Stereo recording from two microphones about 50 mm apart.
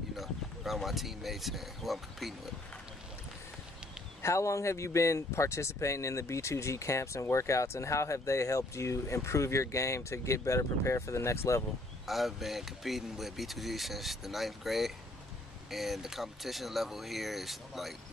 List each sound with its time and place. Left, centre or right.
0.1 s speech: centre
4.2 s speech: left
12.1 s speech: centre